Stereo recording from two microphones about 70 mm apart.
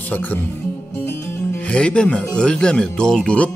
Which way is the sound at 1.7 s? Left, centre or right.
Centre.